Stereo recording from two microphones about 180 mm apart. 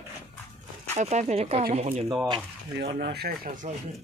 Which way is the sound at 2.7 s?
65° right (ahead or behind).